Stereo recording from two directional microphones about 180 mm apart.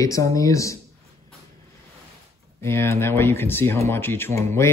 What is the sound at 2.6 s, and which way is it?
Speech, 15° left (ahead or behind).